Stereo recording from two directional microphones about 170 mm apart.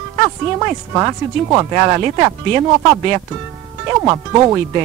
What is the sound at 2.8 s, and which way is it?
Speech, 10° right (ahead or behind).